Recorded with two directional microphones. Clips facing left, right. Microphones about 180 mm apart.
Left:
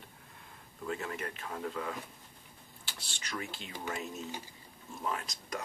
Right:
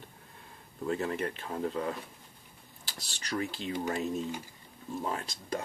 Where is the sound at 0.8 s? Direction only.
35° right (ahead or behind).